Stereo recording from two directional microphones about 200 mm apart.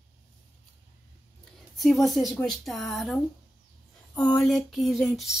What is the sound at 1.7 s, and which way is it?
Speech, centre (ahead or behind).